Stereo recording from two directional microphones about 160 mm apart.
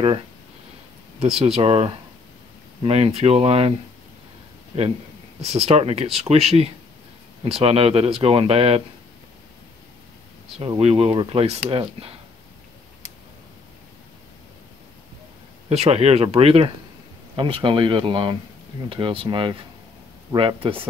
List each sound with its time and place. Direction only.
1.2 s speech: 40° right (ahead or behind)
5.4 s speech: 40° right (ahead or behind)
10.6 s speech: 40° right (ahead or behind)
15.7 s speech: 40° right (ahead or behind)